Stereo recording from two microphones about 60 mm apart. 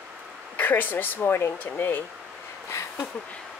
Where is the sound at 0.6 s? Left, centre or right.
Left.